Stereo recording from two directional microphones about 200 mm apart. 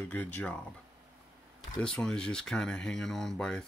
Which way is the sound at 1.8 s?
5° left (ahead or behind).